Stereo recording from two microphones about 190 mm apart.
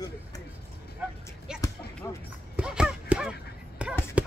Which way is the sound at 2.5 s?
5° right (ahead or behind).